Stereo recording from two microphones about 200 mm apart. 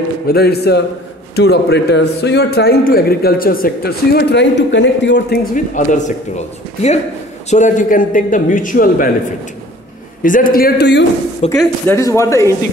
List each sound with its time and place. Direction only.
0.3 s a man's voice: 50° left (ahead or behind)
5.5 s a man's voice: 40° left (ahead or behind)
7.4 s a man's voice: 35° left (ahead or behind)
10.2 s a man's voice: 45° left (ahead or behind)
11.5 s speech: 15° left (ahead or behind)